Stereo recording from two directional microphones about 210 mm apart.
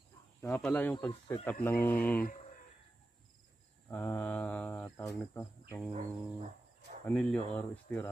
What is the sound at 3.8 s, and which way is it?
Speech, 10° left (ahead or behind).